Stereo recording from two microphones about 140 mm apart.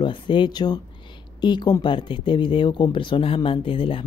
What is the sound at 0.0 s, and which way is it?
Speech, 35° left (ahead or behind).